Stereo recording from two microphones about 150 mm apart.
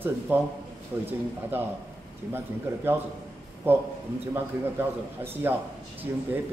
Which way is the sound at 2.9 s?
15° right (ahead or behind).